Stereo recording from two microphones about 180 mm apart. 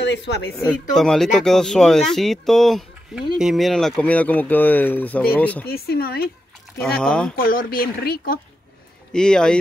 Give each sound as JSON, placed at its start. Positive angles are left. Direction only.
{"t": 0.0, "sound": "speech", "side_deg": 75}
{"t": 0.5, "sound": "speech", "side_deg": 5}
{"t": 5.7, "sound": "speech", "side_deg": 60}
{"t": 6.8, "sound": "speech", "side_deg": 5}
{"t": 7.3, "sound": "speech", "side_deg": 55}
{"t": 9.1, "sound": "speech", "side_deg": 5}